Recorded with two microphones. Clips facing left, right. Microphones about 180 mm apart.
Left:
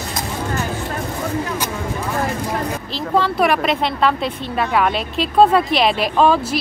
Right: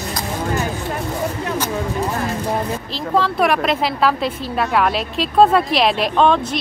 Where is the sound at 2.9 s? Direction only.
Centre (ahead or behind).